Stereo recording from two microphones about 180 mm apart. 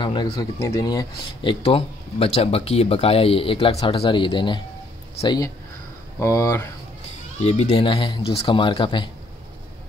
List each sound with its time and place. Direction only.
0.0 s speech: 25° left (ahead or behind)
7.4 s speech: 35° left (ahead or behind)